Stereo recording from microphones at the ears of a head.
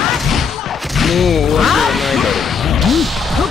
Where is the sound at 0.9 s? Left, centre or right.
Left.